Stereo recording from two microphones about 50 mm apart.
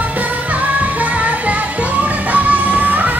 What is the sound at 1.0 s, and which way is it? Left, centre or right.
Music, right.